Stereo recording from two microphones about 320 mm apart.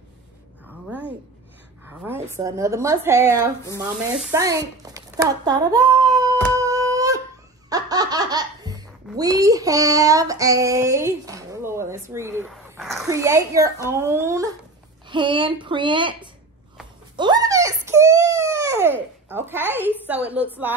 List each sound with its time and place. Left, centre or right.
1.9 s a woman's voice: centre
3.8 s sizzle: centre
7.7 s speech: centre
17.2 s a sound: centre
19.2 s a child's voice: centre